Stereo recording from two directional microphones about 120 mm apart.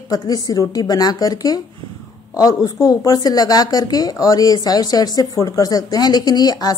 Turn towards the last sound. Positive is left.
turn(degrees=35)  # may be behind; listen again after turning